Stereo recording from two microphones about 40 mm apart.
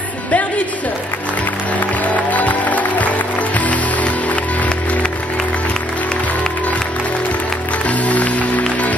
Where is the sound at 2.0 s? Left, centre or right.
Left.